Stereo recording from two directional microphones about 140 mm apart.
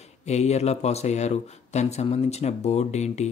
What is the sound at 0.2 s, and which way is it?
Speech, 50° left (ahead or behind).